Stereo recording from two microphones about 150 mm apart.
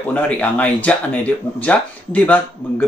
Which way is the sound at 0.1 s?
10° left (ahead or behind).